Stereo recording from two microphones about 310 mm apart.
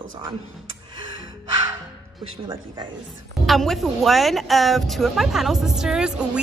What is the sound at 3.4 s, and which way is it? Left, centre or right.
Speech, centre.